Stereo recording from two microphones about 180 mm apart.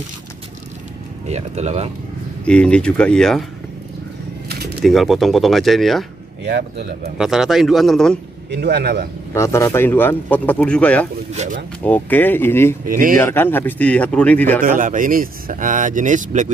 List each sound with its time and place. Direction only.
1.2 s speech: 40° right (ahead or behind)
2.4 s speech: 5° left (ahead or behind)
4.5 s bird: 65° right (ahead or behind)
4.8 s speech: centre (ahead or behind)
6.4 s speech: 65° right (ahead or behind)
7.2 s speech: centre (ahead or behind)
8.5 s speech: 70° right (ahead or behind)
9.3 s speech: 15° left (ahead or behind)
11.3 s speech: 45° right (ahead or behind)
11.8 s speech: 10° left (ahead or behind)
12.8 s speech: 50° right (ahead or behind)
13.2 s speech: 10° left (ahead or behind)
14.6 s speech: 45° right (ahead or behind)